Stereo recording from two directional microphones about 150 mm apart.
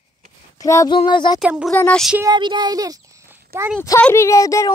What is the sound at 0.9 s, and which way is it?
Speech, 30° left (ahead or behind).